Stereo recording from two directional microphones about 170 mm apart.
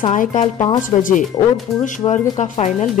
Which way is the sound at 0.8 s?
50° left (ahead or behind).